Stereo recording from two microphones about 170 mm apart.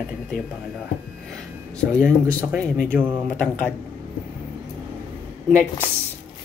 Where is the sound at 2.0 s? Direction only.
15° right (ahead or behind).